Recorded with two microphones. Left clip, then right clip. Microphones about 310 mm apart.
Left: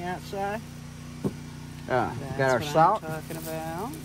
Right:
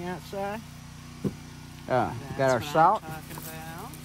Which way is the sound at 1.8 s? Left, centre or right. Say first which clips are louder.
Even; centre.